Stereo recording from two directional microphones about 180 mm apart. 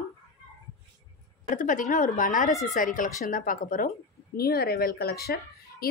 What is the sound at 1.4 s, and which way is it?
A woman's voice, 45° left (ahead or behind).